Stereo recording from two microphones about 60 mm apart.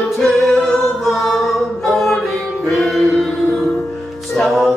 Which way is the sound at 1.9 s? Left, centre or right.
Centre.